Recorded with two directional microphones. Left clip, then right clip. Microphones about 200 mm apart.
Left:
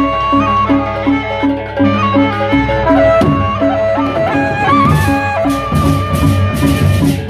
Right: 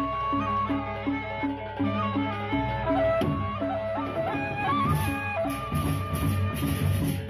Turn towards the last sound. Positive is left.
turn(degrees=35)  # may be behind; listen again after turning